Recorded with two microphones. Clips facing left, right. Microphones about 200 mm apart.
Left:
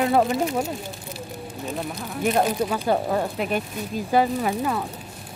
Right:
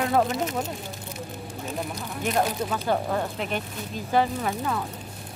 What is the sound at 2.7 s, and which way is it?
Speech, 10° left (ahead or behind).